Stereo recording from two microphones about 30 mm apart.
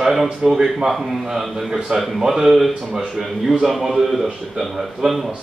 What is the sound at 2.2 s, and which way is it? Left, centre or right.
Speech, right.